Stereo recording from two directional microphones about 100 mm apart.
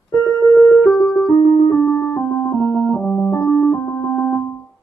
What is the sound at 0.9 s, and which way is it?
Music, 5° left (ahead or behind).